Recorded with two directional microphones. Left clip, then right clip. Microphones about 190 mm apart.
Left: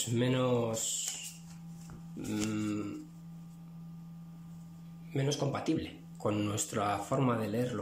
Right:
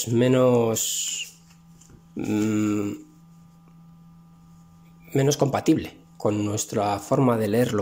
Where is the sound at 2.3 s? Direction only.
40° right (ahead or behind).